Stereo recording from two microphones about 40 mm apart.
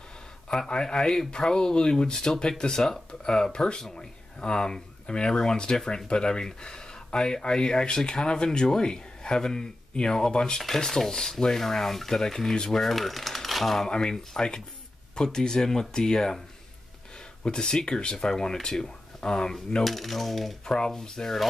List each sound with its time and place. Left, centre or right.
0.5 s speech: left
12.8 s a sound: centre
13.8 s speech: left
17.4 s speech: left
19.8 s coin: centre
20.6 s speech: centre